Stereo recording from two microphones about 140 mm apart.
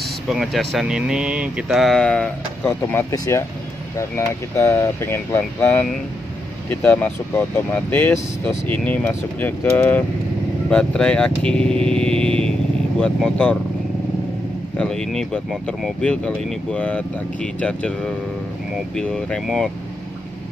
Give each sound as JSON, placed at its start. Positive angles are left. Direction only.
{"t": 0.3, "sound": "speech", "side_deg": 0}
{"t": 4.6, "sound": "speech", "side_deg": 20}
{"t": 14.8, "sound": "speech", "side_deg": 5}